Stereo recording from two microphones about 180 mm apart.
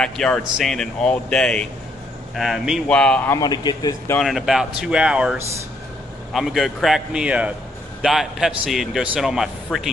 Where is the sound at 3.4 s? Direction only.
25° left (ahead or behind).